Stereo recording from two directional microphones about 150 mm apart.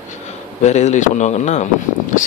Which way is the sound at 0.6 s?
50° left (ahead or behind).